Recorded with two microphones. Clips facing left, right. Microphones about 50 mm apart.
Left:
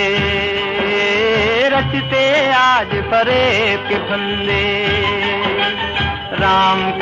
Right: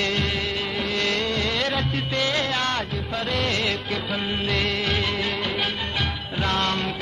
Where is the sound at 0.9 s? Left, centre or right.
Left.